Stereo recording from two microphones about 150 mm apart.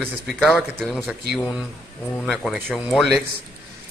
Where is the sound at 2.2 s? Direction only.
Centre (ahead or behind).